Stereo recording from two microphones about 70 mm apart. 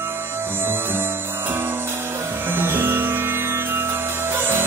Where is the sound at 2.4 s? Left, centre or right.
Right.